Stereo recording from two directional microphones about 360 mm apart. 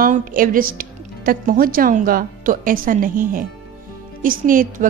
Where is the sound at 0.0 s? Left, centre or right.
Right.